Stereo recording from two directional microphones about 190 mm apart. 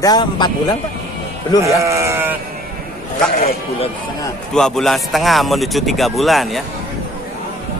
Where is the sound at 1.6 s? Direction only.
15° right (ahead or behind).